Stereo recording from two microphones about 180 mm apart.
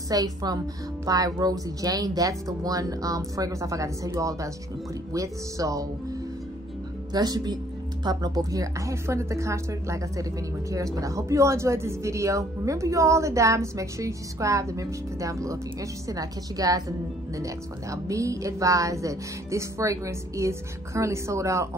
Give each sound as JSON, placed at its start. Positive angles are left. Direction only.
{"t": 0.1, "sound": "a woman's voice", "side_deg": -20}
{"t": 7.1, "sound": "a woman's voice", "side_deg": -20}